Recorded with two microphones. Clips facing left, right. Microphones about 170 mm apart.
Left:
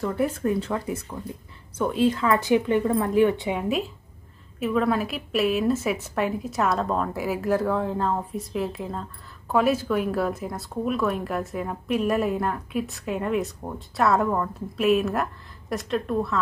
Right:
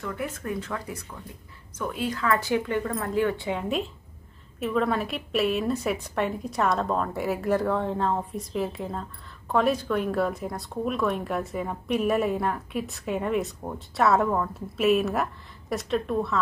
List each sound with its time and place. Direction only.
0.0 s a woman's voice: 35° left (ahead or behind); by 16.3 s centre (ahead or behind)